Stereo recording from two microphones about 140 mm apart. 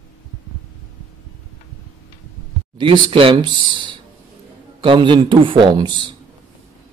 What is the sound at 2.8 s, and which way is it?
A man's voice, 35° right (ahead or behind).